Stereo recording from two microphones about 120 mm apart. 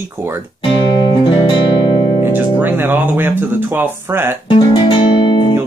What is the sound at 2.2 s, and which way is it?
Speech, 15° right (ahead or behind).